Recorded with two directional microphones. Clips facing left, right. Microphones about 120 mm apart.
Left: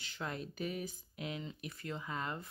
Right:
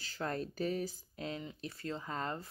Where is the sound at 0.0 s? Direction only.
40° right (ahead or behind).